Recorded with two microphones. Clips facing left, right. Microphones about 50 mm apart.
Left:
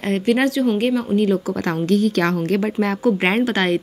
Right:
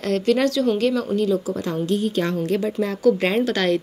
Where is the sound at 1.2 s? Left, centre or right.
Left.